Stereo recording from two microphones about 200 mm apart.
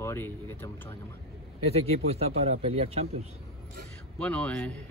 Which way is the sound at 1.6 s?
30° right (ahead or behind).